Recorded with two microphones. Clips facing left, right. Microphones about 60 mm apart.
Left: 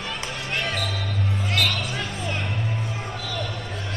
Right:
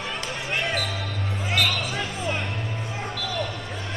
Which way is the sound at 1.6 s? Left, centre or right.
Centre.